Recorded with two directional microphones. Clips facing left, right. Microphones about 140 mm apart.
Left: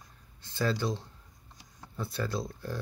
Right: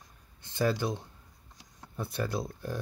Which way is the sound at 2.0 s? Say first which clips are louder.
Right 1 dB; 15° right (ahead or behind).